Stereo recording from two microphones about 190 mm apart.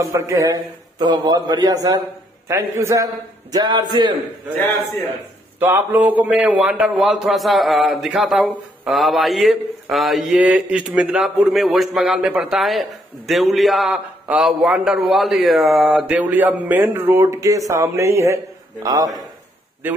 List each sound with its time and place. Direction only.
0.0 s a man's voice: 15° right (ahead or behind)
5.6 s a man's voice: 10° right (ahead or behind)